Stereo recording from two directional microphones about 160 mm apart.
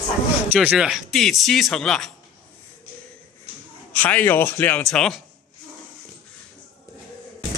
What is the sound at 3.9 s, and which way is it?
Speech, 10° left (ahead or behind).